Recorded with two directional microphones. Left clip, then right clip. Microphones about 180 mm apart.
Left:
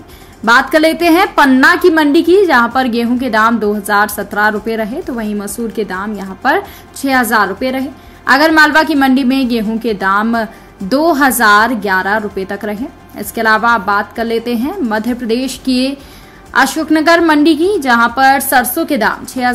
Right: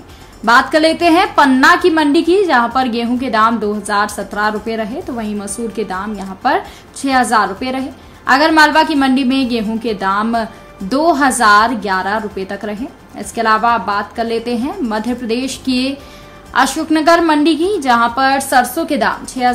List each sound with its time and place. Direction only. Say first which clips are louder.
0.5 s a woman's voice: left 1 dB; 25° left (ahead or behind)